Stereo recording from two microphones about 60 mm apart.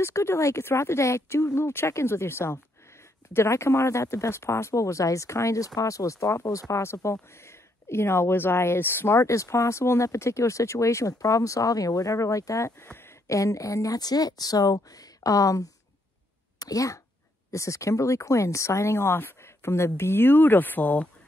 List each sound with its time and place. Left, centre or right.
0.0 s speech: left
6.8 s speech: left
12.8 s a sound: left
13.3 s speech: left
17.5 s speech: left